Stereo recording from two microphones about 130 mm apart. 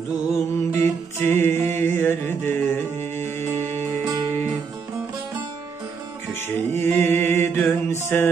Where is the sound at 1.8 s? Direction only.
15° left (ahead or behind).